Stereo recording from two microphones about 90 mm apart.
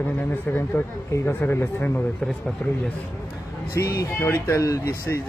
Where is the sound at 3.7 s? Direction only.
30° left (ahead or behind).